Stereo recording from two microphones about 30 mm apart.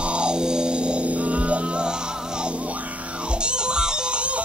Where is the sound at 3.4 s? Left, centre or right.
Right.